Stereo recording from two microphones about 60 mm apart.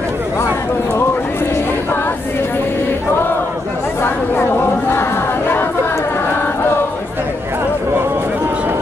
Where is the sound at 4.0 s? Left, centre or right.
Left.